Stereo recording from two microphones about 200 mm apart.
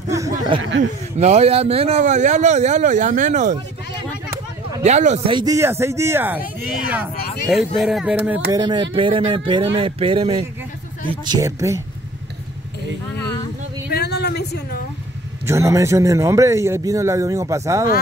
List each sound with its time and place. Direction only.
0.1 s a sound: 15° right (ahead or behind)
1.1 s speech: 35° right (ahead or behind)
4.8 s a man's voice: 35° right (ahead or behind); by 8.4 s 5° right (ahead or behind)
8.5 s a man's voice: 20° right (ahead or behind)
13.9 s a sound: 55° left (ahead or behind)
15.4 s a man's voice: 15° right (ahead or behind)